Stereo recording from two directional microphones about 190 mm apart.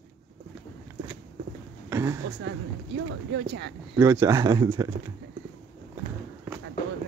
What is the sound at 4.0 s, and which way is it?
Speech, 15° right (ahead or behind).